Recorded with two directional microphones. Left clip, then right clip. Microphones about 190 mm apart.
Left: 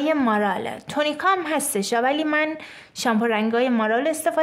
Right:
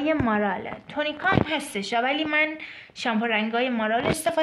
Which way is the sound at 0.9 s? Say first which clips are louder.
Left 4 dB; 50° left (ahead or behind).